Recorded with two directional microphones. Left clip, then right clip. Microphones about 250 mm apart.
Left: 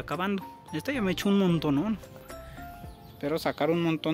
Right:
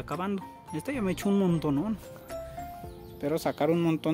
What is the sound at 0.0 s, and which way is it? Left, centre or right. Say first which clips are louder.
Speech: left 2 dB; centre.